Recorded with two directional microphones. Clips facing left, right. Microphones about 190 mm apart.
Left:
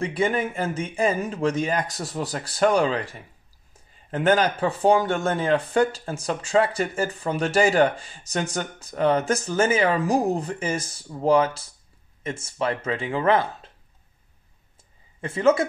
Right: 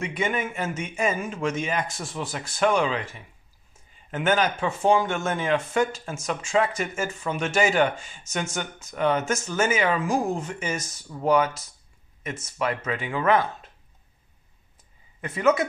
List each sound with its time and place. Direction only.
0.0 s speech: 30° left (ahead or behind)
15.1 s speech: 30° left (ahead or behind)